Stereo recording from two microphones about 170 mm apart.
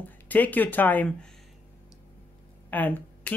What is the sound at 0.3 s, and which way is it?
Speech, 10° left (ahead or behind).